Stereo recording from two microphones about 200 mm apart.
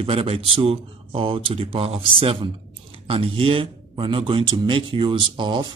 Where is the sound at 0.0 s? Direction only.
30° right (ahead or behind).